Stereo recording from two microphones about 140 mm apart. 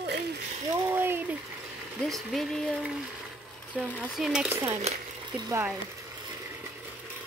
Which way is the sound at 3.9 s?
5° right (ahead or behind).